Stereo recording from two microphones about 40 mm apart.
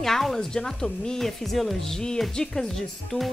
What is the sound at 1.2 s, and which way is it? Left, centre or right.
Speech, centre.